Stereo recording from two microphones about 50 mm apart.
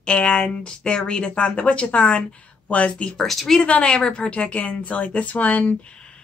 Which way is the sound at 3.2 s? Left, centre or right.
Centre.